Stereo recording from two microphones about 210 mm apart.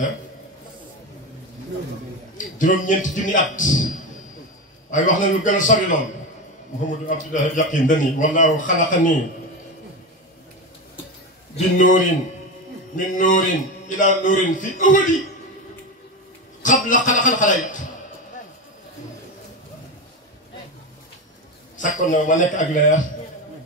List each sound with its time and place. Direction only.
2.3 s a man's voice: 40° left (ahead or behind)
4.9 s a man's voice: 40° left (ahead or behind)
7.1 s a man's voice: 35° left (ahead or behind)
11.5 s a man's voice: 35° left (ahead or behind)
16.6 s a man's voice: 40° left (ahead or behind)
21.7 s a man's voice: 40° left (ahead or behind)